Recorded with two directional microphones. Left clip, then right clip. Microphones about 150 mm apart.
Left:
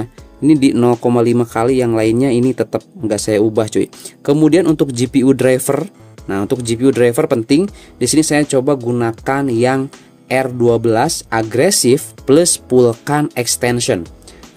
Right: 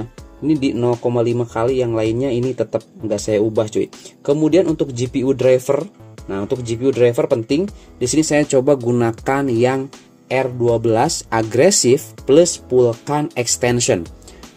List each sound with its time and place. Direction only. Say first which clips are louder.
0.5 s speech: left 6 dB; 45° left (ahead or behind)
8.0 s speech: left 2 dB; 30° left (ahead or behind)
10.2 s speech: left 3 dB; 40° left (ahead or behind)
10.8 s speech: left 2 dB; 20° left (ahead or behind)
12.3 s speech: left 1 dB; 40° left (ahead or behind)
13.0 s speech: left 3 dB; 30° left (ahead or behind); by 14.0 s 15° left (ahead or behind)